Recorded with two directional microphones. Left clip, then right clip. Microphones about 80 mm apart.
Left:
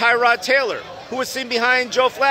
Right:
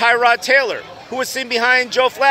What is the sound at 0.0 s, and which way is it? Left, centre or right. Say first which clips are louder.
A man's voice: right 2 dB; centre.